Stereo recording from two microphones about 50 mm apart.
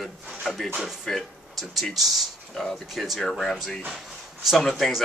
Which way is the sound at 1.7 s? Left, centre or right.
Centre.